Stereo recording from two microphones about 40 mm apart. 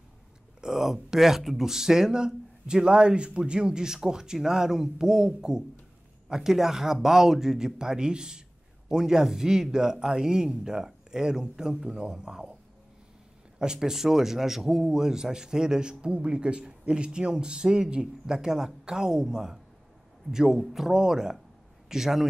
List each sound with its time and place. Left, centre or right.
0.6 s speech: centre
13.6 s a man's voice: centre